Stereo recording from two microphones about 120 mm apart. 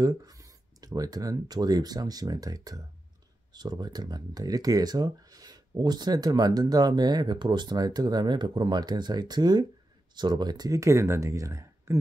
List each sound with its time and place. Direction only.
0.0 s speech: 30° right (ahead or behind)